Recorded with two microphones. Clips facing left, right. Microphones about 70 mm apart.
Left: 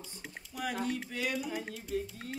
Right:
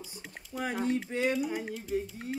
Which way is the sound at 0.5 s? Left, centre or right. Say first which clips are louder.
Right 3 dB; right.